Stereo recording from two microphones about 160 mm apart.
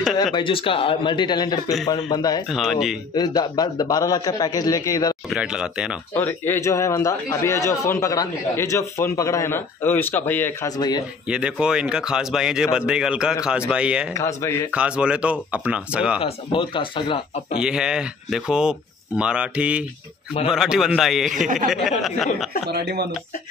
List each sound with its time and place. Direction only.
0.2 s a man's voice: 30° left (ahead or behind)
2.5 s speech: centre (ahead or behind)
3.2 s a man's voice: 25° left (ahead or behind)
5.3 s speech: 5° right (ahead or behind)
6.1 s a man's voice: 15° left (ahead or behind)
11.2 s speech: 5° right (ahead or behind)
14.1 s a man's voice: 20° left (ahead or behind)
14.7 s speech: 5° right (ahead or behind)
16.2 s speech: 35° left (ahead or behind)
17.6 s speech: 5° right (ahead or behind)
21.3 s speech: 55° right (ahead or behind)
21.6 s speech: centre (ahead or behind)
22.7 s speech: 90° right